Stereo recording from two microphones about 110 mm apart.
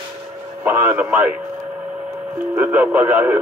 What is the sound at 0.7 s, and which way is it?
Speech, 15° right (ahead or behind).